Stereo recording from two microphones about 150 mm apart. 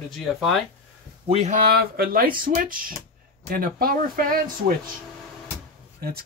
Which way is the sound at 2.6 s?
70° right (ahead or behind).